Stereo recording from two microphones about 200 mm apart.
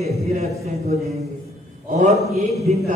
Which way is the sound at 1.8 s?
40° right (ahead or behind).